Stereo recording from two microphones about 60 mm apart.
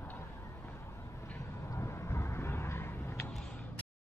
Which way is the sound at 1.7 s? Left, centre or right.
Left.